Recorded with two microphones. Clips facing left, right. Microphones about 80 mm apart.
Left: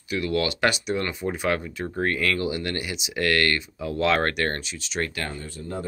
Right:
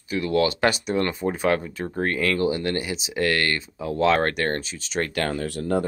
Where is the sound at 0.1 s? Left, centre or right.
Right.